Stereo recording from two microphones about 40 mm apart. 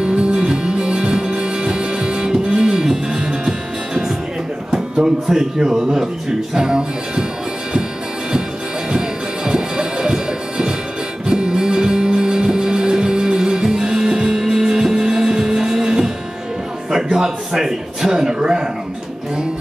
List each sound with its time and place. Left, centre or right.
0.0 s music: right
4.6 s speech: centre
6.5 s music: centre
8.9 s music: centre
16.9 s a man's voice: centre